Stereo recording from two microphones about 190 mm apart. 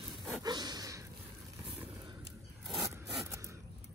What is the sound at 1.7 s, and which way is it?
Vehicle, 30° right (ahead or behind).